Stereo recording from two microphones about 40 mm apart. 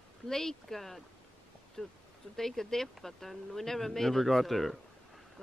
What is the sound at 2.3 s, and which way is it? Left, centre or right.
Speech, centre.